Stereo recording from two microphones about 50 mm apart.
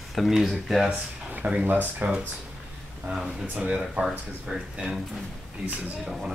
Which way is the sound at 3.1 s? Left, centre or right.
Right.